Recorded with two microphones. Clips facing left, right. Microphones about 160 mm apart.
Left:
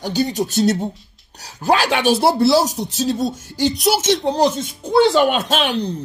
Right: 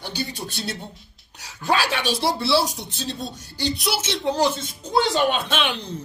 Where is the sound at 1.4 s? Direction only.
40° left (ahead or behind).